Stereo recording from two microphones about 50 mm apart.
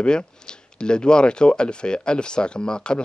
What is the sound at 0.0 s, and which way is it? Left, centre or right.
Speech, centre.